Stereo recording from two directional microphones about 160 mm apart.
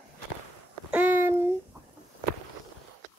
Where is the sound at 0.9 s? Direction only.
10° right (ahead or behind).